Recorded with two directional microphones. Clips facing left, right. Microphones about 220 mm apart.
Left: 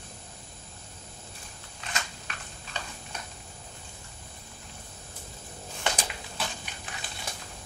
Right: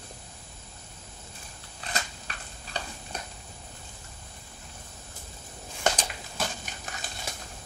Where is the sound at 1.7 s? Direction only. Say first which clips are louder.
Right 2 dB; 35° right (ahead or behind).